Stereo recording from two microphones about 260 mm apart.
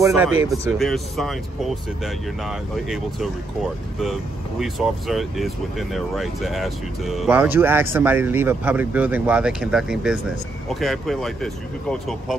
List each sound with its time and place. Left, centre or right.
0.0 s speech: centre